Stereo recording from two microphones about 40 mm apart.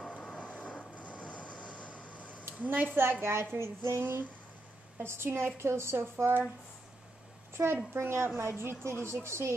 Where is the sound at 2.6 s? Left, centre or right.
Right.